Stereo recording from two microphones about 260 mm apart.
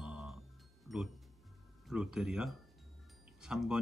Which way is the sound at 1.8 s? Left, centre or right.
Centre.